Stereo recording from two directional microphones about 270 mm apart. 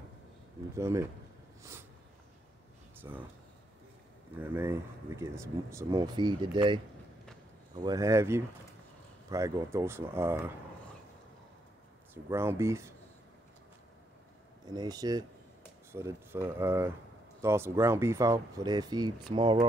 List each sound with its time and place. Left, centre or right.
0.7 s speech: centre
1.6 s snort: centre
3.0 s speech: centre
4.4 s speech: centre
12.1 s speech: centre
14.7 s speech: centre